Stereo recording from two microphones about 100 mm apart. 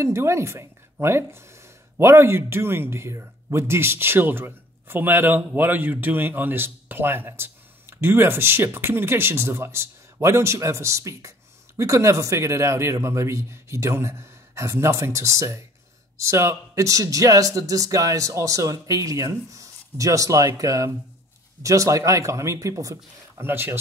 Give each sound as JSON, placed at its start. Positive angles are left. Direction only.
{"t": 0.0, "sound": "speech", "side_deg": -25}
{"t": 23.3, "sound": "speech", "side_deg": -20}